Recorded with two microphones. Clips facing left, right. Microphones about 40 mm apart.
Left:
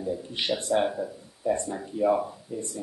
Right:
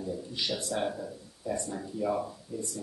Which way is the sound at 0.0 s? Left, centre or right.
Left.